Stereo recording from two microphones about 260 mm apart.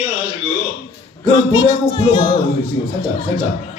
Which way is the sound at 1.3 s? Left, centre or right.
Centre.